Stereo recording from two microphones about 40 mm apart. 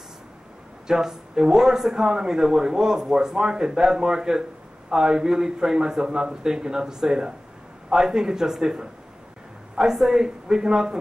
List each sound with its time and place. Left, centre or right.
0.8 s speech: centre
9.9 s speech: centre